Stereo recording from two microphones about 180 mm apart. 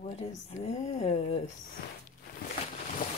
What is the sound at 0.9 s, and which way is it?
Speech, 35° left (ahead or behind).